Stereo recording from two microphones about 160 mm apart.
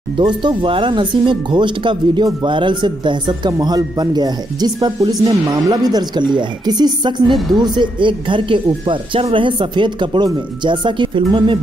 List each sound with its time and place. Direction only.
0.2 s speech: 30° right (ahead or behind)